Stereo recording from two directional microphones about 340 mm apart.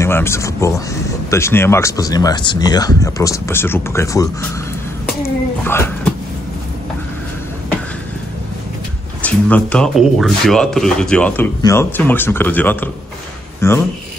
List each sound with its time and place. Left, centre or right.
0.0 s speech: centre
5.6 s speech: centre
9.2 s speech: centre